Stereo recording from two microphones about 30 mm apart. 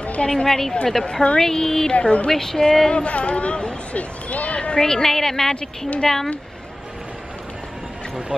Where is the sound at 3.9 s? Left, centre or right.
Left.